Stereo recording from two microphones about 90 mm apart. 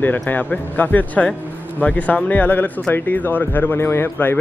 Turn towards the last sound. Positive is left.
turn(degrees=20)  # may be behind; listen again after turning